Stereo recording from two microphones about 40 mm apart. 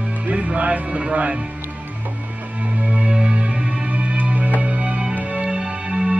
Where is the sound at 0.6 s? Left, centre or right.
Right.